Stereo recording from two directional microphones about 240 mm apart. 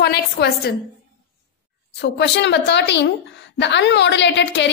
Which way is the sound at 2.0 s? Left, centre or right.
Left.